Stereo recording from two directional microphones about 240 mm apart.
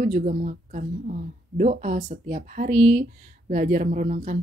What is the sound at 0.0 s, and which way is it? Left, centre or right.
Speech, right.